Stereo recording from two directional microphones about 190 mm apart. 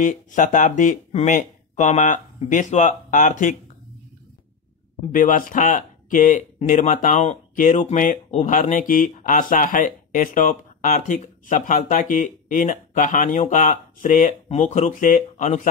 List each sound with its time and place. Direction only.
0.0 s speech: 40° left (ahead or behind)
5.1 s speech: 45° left (ahead or behind)